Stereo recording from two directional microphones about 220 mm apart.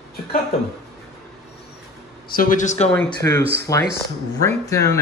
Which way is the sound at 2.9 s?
10° left (ahead or behind).